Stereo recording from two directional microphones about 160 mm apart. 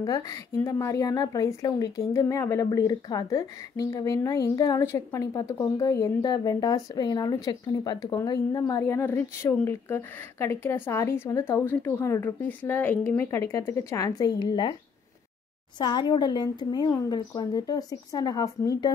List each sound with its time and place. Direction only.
0.0 s a woman's voice: 20° left (ahead or behind)
15.8 s a woman's voice: 25° left (ahead or behind)